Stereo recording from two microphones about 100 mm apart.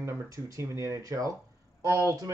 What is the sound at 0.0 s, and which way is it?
Speech, 30° right (ahead or behind).